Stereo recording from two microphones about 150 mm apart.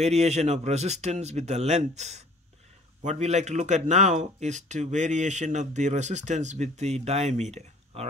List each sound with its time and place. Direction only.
0.0 s speech: 45° right (ahead or behind)